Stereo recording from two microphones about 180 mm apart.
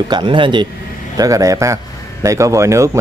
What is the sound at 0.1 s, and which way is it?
Speech, 25° right (ahead or behind).